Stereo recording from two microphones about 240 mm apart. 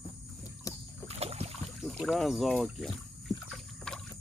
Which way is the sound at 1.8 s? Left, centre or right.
Centre.